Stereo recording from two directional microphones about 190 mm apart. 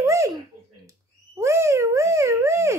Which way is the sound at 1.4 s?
15° right (ahead or behind).